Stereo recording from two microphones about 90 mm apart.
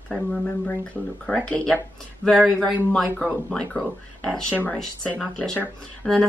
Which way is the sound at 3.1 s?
10° left (ahead or behind).